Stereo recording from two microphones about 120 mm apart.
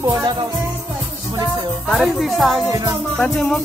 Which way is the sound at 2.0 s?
Centre (ahead or behind).